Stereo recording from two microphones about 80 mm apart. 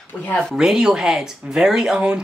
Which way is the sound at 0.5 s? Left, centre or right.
Centre.